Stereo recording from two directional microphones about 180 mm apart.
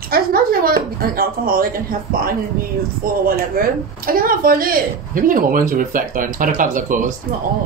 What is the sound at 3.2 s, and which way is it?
A woman's voice, 55° right (ahead or behind).